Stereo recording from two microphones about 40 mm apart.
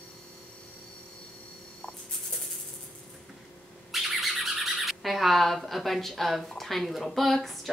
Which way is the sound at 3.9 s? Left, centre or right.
Centre.